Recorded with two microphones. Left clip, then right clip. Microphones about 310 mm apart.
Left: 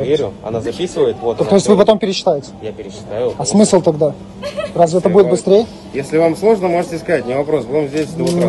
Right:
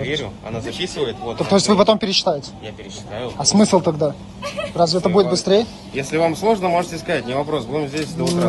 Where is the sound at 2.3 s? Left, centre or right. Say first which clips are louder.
Left 8 dB; right.